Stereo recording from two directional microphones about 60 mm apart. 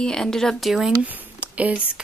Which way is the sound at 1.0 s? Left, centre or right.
Right.